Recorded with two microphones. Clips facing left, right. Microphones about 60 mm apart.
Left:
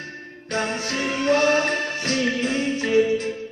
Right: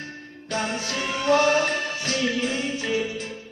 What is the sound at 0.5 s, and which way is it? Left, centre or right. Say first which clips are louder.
Music: left 2 dB; left.